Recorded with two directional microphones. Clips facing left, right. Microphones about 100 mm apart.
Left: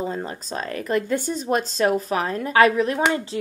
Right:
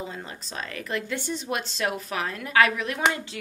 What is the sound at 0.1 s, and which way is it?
A woman's voice, 40° left (ahead or behind).